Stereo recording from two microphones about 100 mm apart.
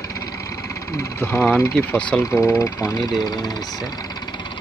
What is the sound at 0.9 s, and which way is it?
Speech, 30° left (ahead or behind).